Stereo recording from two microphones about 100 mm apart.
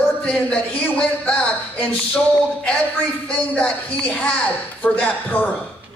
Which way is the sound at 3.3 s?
15° left (ahead or behind).